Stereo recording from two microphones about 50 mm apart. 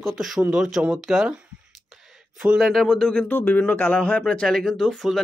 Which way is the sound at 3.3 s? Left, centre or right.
Left.